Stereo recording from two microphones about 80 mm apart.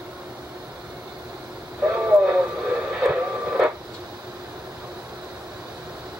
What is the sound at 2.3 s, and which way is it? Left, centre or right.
Radio, centre.